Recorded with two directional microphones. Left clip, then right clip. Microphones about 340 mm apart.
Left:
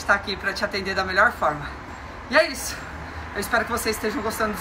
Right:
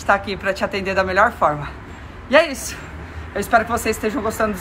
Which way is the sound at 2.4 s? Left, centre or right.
Centre.